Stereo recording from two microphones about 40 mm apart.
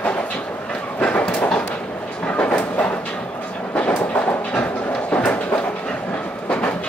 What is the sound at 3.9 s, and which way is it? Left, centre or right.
Train, left.